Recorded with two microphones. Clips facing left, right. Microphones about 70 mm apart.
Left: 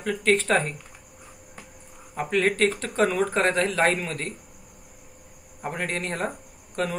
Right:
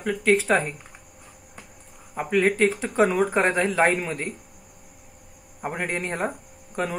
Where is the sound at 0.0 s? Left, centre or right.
Centre.